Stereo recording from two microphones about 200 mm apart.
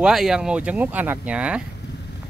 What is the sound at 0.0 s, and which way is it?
Speech, centre (ahead or behind).